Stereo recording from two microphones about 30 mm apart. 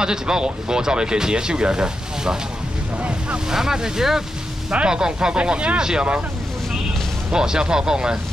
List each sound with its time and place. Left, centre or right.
0.0 s speech: right
3.4 s speech: centre
4.6 s speech: right
5.4 s speech: right
5.8 s speech: right
7.3 s speech: right